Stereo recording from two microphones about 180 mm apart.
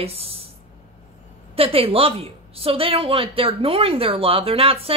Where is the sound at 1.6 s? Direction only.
30° right (ahead or behind).